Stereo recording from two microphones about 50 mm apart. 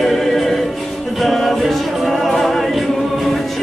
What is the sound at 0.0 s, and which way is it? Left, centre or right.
Music, centre.